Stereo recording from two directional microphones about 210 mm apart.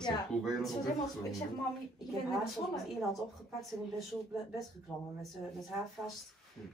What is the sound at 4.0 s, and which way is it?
Speech, centre (ahead or behind).